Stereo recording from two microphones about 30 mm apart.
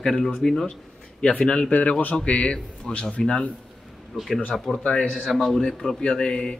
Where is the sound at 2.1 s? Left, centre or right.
Left.